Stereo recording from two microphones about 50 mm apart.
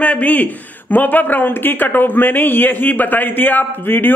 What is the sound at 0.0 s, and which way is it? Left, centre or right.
A man's voice, left.